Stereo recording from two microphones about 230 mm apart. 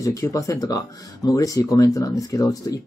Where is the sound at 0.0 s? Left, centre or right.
Centre.